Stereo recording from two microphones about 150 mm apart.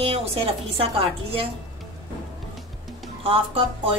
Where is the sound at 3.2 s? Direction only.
40° right (ahead or behind).